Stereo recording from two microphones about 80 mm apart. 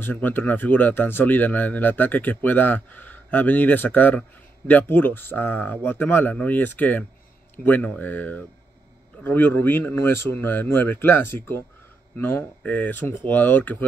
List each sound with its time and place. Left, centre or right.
0.0 s speech: left